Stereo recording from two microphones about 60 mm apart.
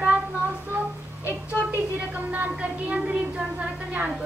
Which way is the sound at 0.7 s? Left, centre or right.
Right.